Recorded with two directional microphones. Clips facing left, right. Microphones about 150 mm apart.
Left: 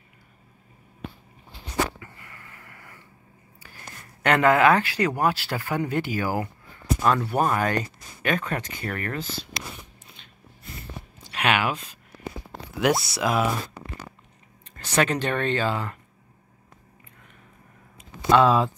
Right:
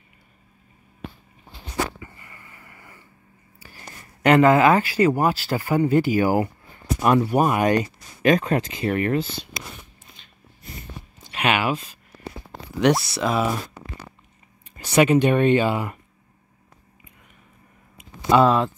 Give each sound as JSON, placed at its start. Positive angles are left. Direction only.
{"t": 2.0, "sound": "sniff", "side_deg": -5}
{"t": 4.2, "sound": "speech", "side_deg": -5}
{"t": 6.2, "sound": "speech", "side_deg": -20}
{"t": 11.2, "sound": "a sound", "side_deg": -5}
{"t": 12.7, "sound": "speech", "side_deg": 0}
{"t": 14.8, "sound": "speech", "side_deg": -10}
{"t": 18.3, "sound": "speech", "side_deg": 0}